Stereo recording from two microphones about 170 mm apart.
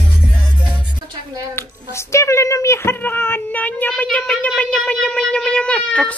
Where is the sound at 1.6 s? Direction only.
15° left (ahead or behind).